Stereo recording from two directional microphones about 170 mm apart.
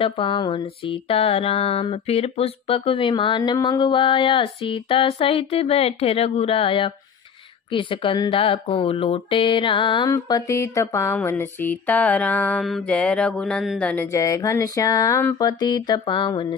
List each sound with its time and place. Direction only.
0.0 s a sound: 30° left (ahead or behind)
7.7 s speech: 30° left (ahead or behind)
11.1 s mantra: 10° left (ahead or behind)
14.1 s speech: 20° left (ahead or behind)